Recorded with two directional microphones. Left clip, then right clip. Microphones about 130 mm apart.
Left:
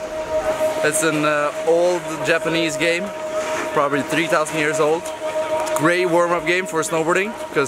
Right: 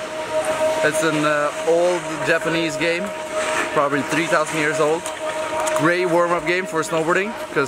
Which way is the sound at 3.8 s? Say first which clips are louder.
Left 2 dB; 5° left (ahead or behind).